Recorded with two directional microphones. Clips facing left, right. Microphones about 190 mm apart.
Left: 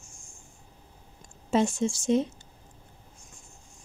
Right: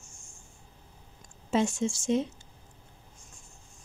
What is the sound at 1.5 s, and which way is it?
Speech, 35° left (ahead or behind).